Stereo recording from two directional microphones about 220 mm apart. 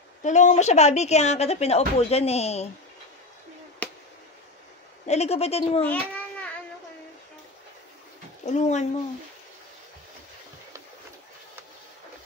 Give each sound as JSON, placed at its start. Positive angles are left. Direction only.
{"t": 0.2, "sound": "speech", "side_deg": 35}
{"t": 5.0, "sound": "speech", "side_deg": 30}
{"t": 5.9, "sound": "a sound", "side_deg": 5}
{"t": 8.5, "sound": "speech", "side_deg": 30}